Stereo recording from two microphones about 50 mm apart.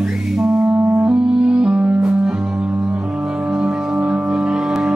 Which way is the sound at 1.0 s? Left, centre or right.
Right.